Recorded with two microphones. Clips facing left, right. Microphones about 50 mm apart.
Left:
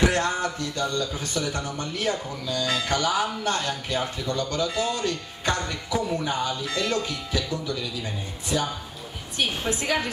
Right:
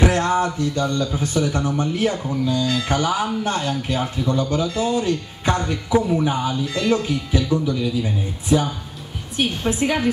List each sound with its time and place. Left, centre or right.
0.0 s speech: centre
9.7 s speech: centre